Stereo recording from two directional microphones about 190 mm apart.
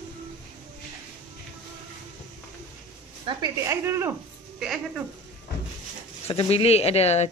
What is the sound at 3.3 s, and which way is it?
Speech, 20° right (ahead or behind).